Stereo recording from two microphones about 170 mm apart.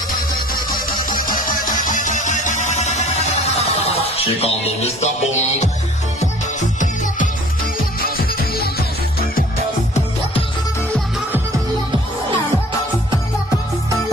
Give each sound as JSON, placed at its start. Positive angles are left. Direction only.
{"t": 0.1, "sound": "music", "side_deg": 60}
{"t": 8.0, "sound": "music", "side_deg": 60}